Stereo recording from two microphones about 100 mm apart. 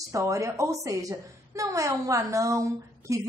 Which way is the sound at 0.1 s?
30° right (ahead or behind).